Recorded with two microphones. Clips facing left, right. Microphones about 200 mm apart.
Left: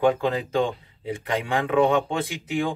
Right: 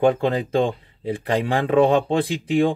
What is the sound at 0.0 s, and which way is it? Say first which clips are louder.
Speech: right 3 dB; 30° right (ahead or behind).